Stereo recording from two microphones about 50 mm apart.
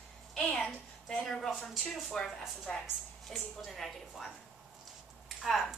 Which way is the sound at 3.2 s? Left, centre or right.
Centre.